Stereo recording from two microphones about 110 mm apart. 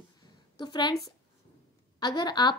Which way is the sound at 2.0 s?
40° left (ahead or behind).